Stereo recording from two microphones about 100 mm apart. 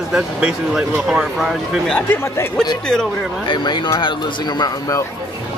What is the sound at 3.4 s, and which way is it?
Speech, 55° left (ahead or behind).